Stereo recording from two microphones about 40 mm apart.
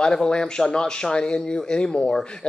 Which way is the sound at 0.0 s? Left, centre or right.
Centre.